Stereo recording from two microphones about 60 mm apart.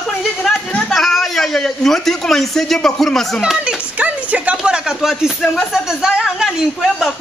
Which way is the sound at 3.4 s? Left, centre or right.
Centre.